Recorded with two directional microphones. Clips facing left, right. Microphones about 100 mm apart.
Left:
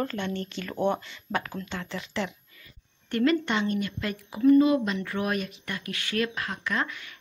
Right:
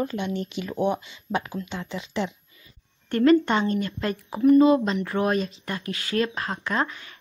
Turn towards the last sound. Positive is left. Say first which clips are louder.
# right 4 dB
turn(degrees=-30)  # may be behind; listen again after turning